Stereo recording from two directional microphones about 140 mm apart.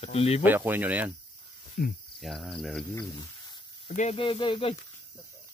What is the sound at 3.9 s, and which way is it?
Speech, 55° left (ahead or behind).